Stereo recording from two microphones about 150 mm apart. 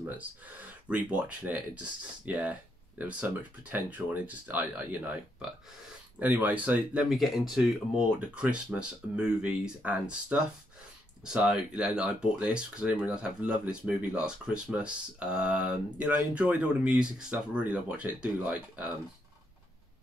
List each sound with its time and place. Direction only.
0.2 s speech: 10° right (ahead or behind)